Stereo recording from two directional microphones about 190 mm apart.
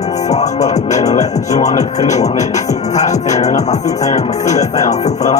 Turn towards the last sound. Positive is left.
turn(degrees=35)  # may be behind; listen again after turning